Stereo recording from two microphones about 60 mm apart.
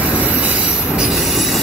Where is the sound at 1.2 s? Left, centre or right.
Centre.